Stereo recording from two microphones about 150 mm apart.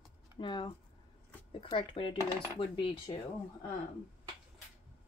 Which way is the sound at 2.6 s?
30° left (ahead or behind).